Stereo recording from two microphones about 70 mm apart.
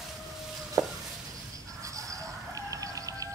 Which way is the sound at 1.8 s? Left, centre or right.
Right.